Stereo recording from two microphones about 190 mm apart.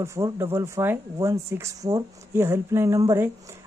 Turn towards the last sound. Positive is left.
turn(degrees=-15)  # may be behind; listen again after turning